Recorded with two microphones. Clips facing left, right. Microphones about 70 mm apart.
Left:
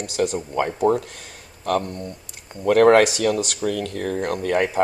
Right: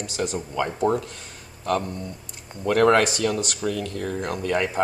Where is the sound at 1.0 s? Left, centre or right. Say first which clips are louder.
Even; left.